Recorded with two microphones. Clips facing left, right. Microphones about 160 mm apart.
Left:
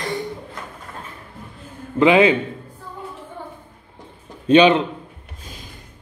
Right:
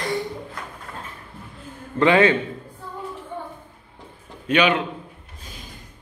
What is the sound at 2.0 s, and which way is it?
Speech, 15° left (ahead or behind).